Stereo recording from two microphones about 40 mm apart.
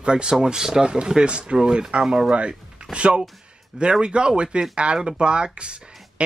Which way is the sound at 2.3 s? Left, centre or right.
Right.